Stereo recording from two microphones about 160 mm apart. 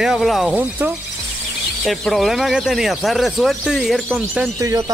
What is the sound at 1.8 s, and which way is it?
Speech, centre (ahead or behind).